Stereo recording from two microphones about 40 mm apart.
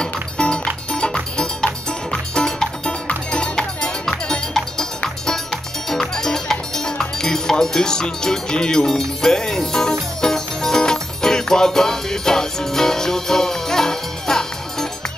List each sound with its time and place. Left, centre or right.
0.0 s music: left